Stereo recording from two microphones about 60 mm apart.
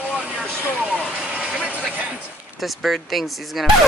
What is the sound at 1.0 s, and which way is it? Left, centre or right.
Vehicle, centre.